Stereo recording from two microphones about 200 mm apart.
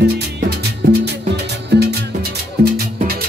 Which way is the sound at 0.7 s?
55° right (ahead or behind).